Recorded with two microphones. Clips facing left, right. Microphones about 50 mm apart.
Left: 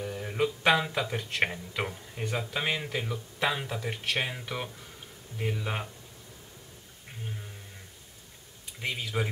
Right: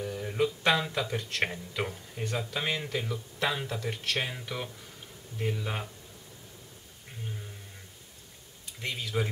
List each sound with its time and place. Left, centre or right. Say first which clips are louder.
0.0 s speech: even; centre
7.1 s a sound: even; centre
8.6 s speech: left 2 dB; centre